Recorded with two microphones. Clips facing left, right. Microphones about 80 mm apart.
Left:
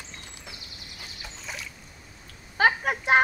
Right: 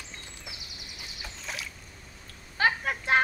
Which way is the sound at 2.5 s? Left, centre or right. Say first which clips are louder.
Left 4 dB; left.